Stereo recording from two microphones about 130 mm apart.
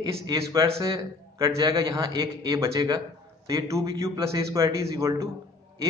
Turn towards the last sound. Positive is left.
turn(degrees=-25)  # may be behind; listen again after turning